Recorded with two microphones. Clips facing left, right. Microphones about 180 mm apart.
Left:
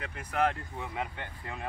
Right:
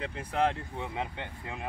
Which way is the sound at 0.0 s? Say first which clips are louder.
Right 1 dB; 30° right (ahead or behind).